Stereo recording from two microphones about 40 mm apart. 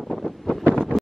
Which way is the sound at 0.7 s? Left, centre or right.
Left.